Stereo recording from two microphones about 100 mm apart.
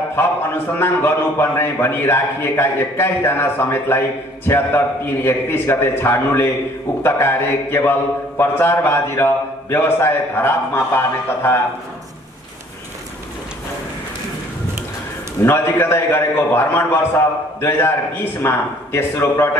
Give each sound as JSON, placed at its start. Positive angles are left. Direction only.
{"t": 0.7, "sound": "speech", "side_deg": 25}
{"t": 15.4, "sound": "speech", "side_deg": 20}